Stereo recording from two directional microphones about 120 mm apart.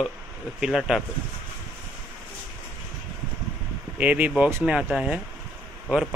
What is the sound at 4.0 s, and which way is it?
Speech, 10° right (ahead or behind).